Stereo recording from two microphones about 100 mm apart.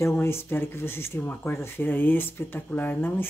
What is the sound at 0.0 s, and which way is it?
Speech, 25° left (ahead or behind).